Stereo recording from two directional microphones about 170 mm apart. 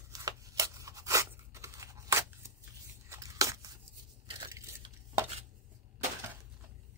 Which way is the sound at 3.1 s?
20° right (ahead or behind).